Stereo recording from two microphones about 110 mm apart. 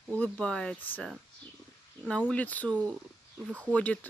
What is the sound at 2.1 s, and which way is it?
Speech, 10° left (ahead or behind).